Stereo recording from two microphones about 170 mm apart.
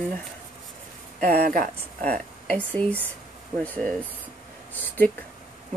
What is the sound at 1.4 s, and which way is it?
Speech, 55° right (ahead or behind).